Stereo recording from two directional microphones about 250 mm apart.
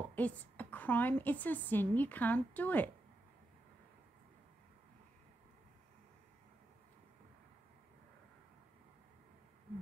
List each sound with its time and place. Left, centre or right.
0.1 s a woman's voice: centre